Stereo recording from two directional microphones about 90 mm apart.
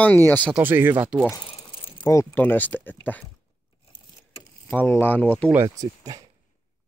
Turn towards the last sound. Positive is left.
turn(degrees=-45)  # may be behind; listen again after turning